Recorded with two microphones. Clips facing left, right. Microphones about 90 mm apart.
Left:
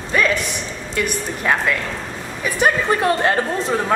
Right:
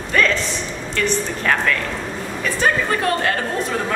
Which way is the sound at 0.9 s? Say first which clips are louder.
Right 2 dB; 15° left (ahead or behind).